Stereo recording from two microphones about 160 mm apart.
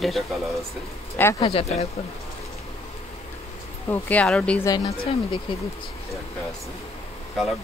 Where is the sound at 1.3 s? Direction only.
35° left (ahead or behind).